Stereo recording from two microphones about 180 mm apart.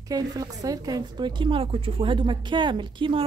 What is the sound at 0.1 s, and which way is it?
A woman's voice, 20° right (ahead or behind).